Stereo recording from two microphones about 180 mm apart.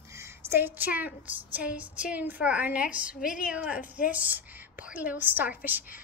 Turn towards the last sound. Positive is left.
turn(degrees=-10)  # may be behind; listen again after turning